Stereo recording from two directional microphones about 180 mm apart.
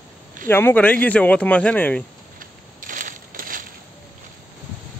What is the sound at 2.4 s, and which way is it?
Crushing, 50° right (ahead or behind).